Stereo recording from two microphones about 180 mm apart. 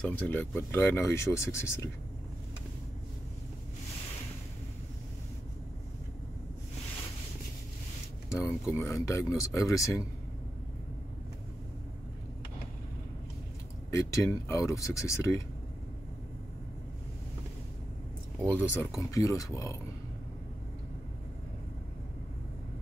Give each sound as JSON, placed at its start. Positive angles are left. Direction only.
{"t": 0.0, "sound": "speech", "side_deg": 10}
{"t": 8.7, "sound": "speech", "side_deg": 15}
{"t": 13.8, "sound": "speech", "side_deg": 15}
{"t": 18.4, "sound": "speech", "side_deg": 10}